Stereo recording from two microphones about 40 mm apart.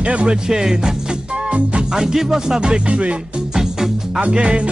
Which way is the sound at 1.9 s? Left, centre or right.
Centre.